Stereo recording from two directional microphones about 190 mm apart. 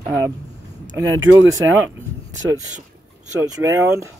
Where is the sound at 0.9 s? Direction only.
15° right (ahead or behind).